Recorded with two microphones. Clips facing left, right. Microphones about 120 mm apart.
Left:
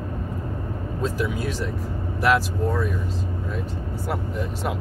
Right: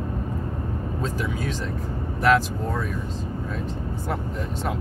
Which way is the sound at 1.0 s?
5° left (ahead or behind).